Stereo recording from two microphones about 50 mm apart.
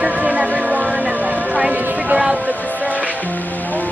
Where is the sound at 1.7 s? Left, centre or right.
Right.